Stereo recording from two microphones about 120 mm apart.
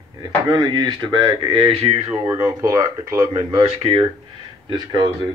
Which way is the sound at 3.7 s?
55° right (ahead or behind).